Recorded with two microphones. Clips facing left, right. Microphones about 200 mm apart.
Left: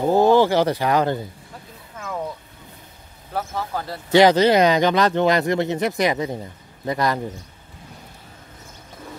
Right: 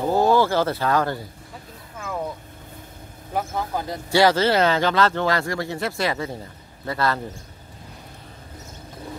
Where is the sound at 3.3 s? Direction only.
15° right (ahead or behind).